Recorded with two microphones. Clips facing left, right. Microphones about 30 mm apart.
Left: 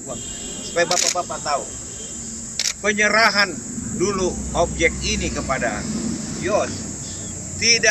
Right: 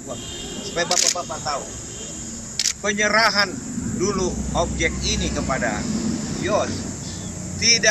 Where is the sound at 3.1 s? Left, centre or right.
Centre.